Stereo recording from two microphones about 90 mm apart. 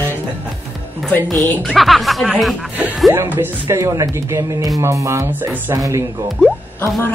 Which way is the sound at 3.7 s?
35° right (ahead or behind).